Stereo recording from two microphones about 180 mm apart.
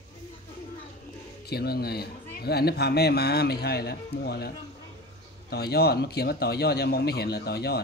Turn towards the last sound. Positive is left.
turn(degrees=65)  # may be behind; listen again after turning